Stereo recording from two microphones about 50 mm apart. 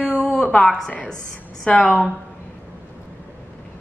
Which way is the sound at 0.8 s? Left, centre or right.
Centre.